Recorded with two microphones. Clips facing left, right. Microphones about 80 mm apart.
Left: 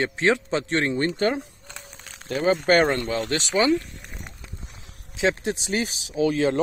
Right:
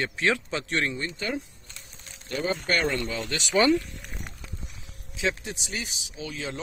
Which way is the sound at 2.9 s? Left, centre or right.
Left.